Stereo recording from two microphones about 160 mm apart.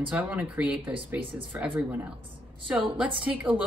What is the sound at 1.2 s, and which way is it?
Speech, 35° right (ahead or behind).